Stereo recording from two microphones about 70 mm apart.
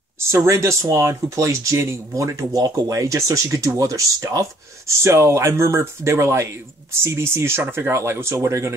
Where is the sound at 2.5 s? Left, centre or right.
Right.